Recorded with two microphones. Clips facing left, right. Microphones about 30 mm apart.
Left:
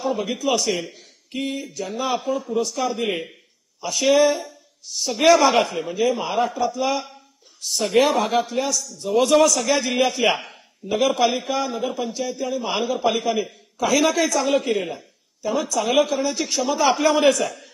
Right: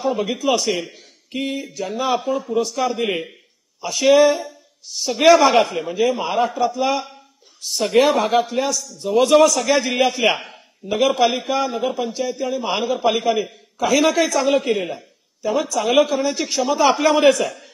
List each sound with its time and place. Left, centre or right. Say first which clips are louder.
0.0 s speech: right 3 dB; centre